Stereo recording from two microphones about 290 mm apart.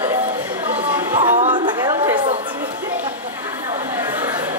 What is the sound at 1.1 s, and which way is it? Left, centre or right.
Chatter, right.